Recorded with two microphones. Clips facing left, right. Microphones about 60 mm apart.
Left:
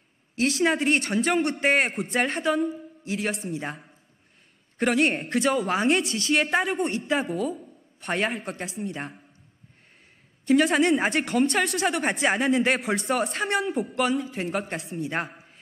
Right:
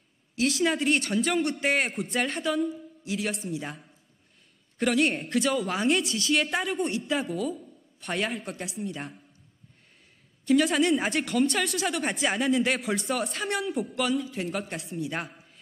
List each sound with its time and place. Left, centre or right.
0.4 s a man's voice: left
10.4 s speech: left
15.0 s a man's voice: left